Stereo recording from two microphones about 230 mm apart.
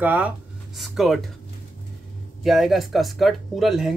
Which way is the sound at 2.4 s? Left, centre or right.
Centre.